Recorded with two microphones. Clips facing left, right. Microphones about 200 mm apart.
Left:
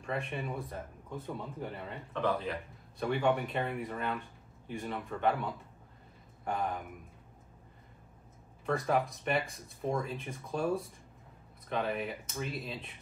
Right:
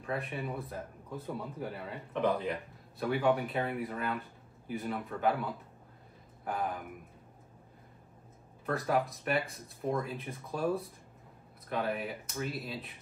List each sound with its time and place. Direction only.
0.0 s a man's voice: centre (ahead or behind)
2.2 s speech: 20° right (ahead or behind)
3.0 s a man's voice: 5° right (ahead or behind)
8.6 s a man's voice: centre (ahead or behind)